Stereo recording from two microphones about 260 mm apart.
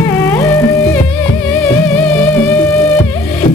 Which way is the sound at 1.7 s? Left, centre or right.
Centre.